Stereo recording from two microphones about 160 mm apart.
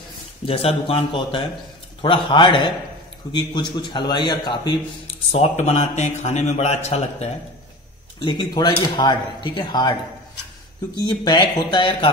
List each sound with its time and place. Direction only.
0.5 s speech: 35° left (ahead or behind)
5.3 s a man's voice: 40° left (ahead or behind)
8.2 s speech: 30° left (ahead or behind)
11.0 s speech: 25° left (ahead or behind)